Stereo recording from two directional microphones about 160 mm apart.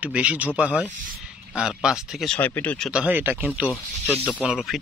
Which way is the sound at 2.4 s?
10° left (ahead or behind).